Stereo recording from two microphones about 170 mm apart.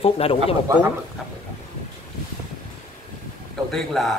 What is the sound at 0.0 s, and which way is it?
Speech, 35° left (ahead or behind).